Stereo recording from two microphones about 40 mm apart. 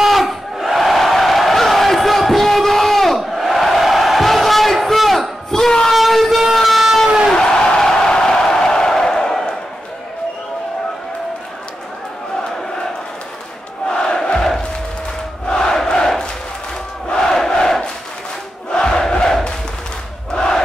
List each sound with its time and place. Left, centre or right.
0.0 s crowd: centre
5.5 s a sound: centre
5.9 s train: centre
6.4 s vehicle: centre
7.3 s a sound: centre
8.5 s crowd: centre
13.8 s crowd: centre
17.3 s crowd: centre